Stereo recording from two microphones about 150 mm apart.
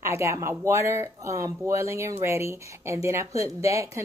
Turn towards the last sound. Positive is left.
turn(degrees=-20)  # may be behind; listen again after turning